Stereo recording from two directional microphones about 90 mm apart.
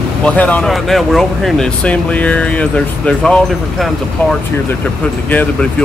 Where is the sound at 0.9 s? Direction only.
Centre (ahead or behind).